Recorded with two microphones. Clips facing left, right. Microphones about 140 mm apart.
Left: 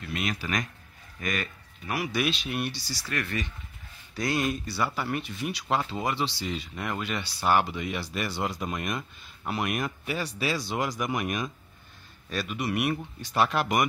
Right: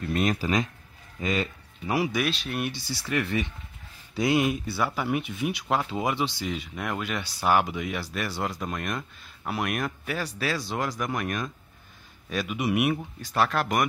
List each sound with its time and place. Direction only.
0.0 s a sound: 40° right (ahead or behind)
1.2 s speech: 25° right (ahead or behind)
2.4 s speech: centre (ahead or behind)
2.7 s speech: 55° right (ahead or behind)
3.0 s speech: 15° right (ahead or behind); by 11.5 s 10° left (ahead or behind)
12.3 s speech: 10° right (ahead or behind)
13.4 s speech: 5° left (ahead or behind)